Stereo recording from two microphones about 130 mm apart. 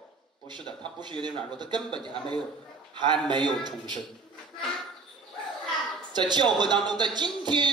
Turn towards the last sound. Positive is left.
turn(degrees=-35)  # may be behind; listen again after turning